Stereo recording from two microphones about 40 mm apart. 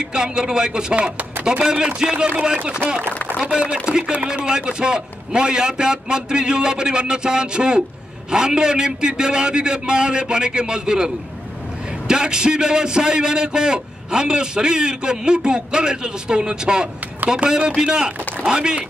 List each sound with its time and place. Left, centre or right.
0.1 s a man's voice: centre
12.1 s a man's voice: centre